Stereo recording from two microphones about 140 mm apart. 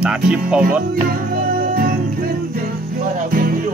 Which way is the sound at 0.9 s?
90° right.